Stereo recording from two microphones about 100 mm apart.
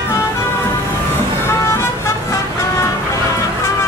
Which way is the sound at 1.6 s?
30° left (ahead or behind).